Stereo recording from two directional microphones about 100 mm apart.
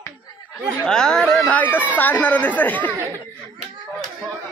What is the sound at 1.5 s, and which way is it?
A man's voice, 15° left (ahead or behind).